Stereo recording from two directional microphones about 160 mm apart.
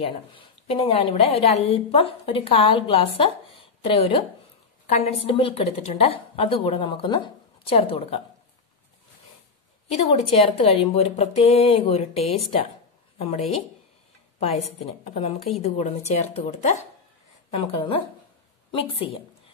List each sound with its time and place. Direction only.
0.0 s a woman's voice: 35° left (ahead or behind)
9.8 s a woman's voice: 40° left (ahead or behind)
14.8 s a woman's voice: 40° left (ahead or behind)
18.7 s a woman's voice: 35° left (ahead or behind)